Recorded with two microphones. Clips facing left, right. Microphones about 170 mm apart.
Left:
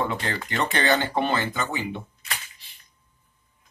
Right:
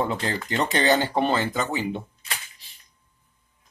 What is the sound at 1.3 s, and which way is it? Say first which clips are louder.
Speech: right 2 dB; 35° right (ahead or behind).